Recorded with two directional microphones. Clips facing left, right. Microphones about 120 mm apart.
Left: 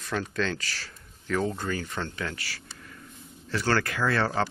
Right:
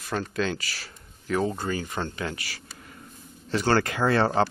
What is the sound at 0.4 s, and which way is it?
Speech, 10° right (ahead or behind).